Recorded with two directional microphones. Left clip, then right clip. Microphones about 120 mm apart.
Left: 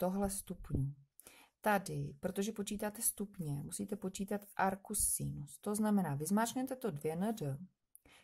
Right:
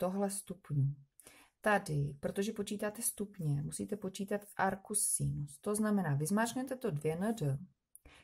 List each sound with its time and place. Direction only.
0.0 s speech: 40° left (ahead or behind)